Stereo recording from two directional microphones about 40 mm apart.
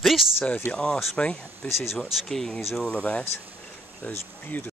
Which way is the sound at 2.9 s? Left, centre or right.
Left.